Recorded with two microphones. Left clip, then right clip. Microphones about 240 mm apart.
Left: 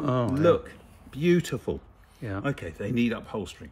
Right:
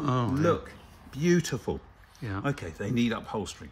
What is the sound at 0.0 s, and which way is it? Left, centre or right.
Speech, centre.